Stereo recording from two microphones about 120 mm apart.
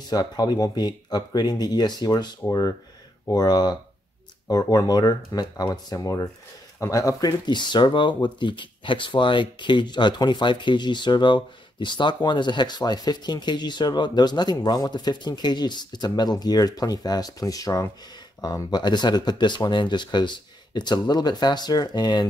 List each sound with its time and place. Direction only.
0.1 s speech: 35° left (ahead or behind)